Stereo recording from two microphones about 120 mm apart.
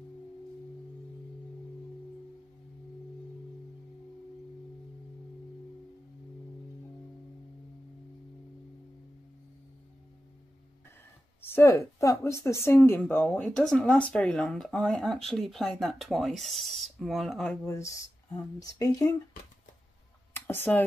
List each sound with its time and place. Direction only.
11.4 s speech: 20° left (ahead or behind); by 17.5 s centre (ahead or behind)
17.6 s speech: 25° left (ahead or behind)
20.3 s a sound: 15° left (ahead or behind)